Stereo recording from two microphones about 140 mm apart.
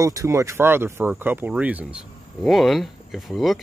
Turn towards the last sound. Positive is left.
turn(degrees=0)  # may be behind; listen again after turning